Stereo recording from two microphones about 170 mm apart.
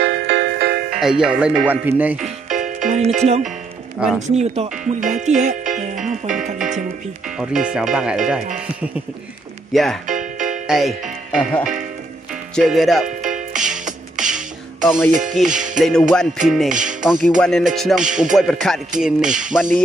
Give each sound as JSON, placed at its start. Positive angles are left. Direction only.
{"t": 0.0, "sound": "music", "side_deg": -90}
{"t": 0.9, "sound": "music", "side_deg": -5}
{"t": 1.9, "sound": "speech", "side_deg": -10}
{"t": 2.2, "sound": "music", "side_deg": -45}
{"t": 4.0, "sound": "speech", "side_deg": -5}
{"t": 4.4, "sound": "music", "side_deg": -40}
{"t": 7.3, "sound": "music", "side_deg": -5}
{"t": 9.7, "sound": "speech", "side_deg": 0}
{"t": 10.0, "sound": "music", "side_deg": -45}
{"t": 10.7, "sound": "speech", "side_deg": 0}
{"t": 12.5, "sound": "speech", "side_deg": 0}
{"t": 13.6, "sound": "music", "side_deg": -5}